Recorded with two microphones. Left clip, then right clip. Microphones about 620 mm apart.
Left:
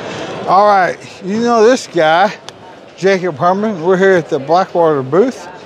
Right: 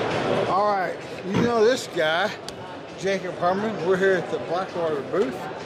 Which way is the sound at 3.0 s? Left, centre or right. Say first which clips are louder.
Left 12 dB; left.